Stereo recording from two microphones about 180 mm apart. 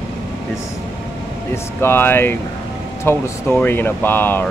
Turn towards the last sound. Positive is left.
turn(degrees=10)  # may be behind; listen again after turning